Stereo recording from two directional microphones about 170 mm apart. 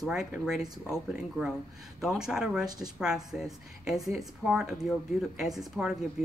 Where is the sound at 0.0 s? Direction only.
5° right (ahead or behind).